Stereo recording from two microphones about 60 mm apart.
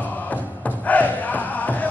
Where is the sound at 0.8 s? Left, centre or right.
Left.